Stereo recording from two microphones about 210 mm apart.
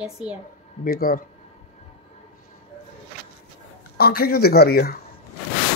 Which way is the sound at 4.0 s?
45° left (ahead or behind).